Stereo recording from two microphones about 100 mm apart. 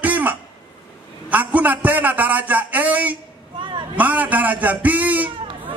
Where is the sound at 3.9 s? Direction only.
15° right (ahead or behind).